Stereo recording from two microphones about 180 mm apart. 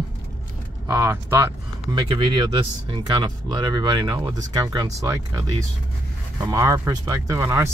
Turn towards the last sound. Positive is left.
turn(degrees=-15)  # may be behind; listen again after turning